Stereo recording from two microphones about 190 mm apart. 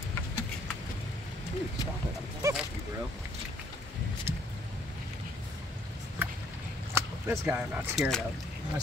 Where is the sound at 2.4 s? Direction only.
15° right (ahead or behind).